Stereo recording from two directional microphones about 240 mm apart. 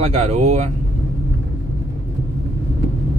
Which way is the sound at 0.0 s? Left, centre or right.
Right.